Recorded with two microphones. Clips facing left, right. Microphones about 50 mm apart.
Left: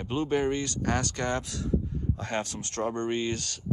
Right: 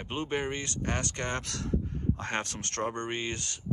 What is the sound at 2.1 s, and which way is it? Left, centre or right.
Speech, right.